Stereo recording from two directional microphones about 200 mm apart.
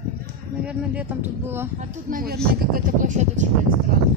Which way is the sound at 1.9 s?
45° right (ahead or behind).